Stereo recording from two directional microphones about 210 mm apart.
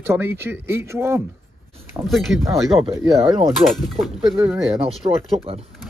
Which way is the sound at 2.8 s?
15° right (ahead or behind).